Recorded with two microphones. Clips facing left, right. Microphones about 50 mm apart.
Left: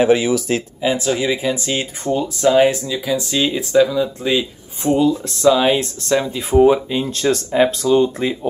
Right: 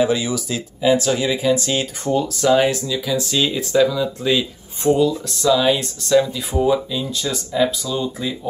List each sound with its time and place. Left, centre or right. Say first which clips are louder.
0.0 s speech: left 4 dB; left
0.8 s speech: right 2 dB; left
5.2 s speech: left 3 dB; left